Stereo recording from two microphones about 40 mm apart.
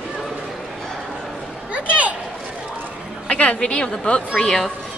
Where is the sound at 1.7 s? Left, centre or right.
Right.